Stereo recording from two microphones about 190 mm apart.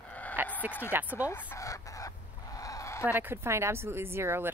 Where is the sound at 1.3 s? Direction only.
15° left (ahead or behind).